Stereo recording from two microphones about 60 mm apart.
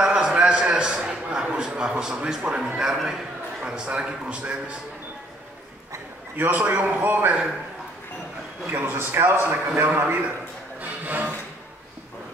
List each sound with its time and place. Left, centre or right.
0.0 s a sound: centre
2.6 s a man's voice: centre
3.6 s a man's voice: centre
6.3 s a man's voice: right
8.6 s a man's voice: right
10.8 s a sound: right